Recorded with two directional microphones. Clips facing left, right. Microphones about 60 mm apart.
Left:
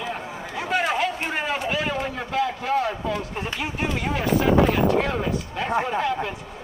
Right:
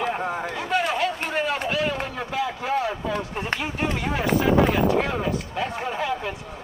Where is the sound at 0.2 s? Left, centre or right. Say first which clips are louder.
Right 6 dB; right.